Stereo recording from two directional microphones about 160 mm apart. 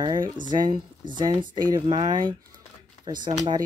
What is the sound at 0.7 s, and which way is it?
Speech, 30° right (ahead or behind).